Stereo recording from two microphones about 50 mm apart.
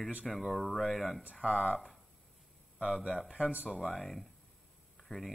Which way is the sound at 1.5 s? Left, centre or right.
Left.